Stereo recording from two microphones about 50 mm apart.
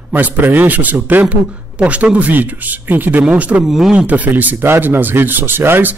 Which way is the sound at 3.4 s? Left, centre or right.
Right.